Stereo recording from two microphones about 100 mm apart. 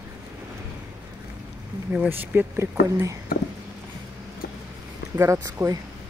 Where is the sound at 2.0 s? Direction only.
25° right (ahead or behind).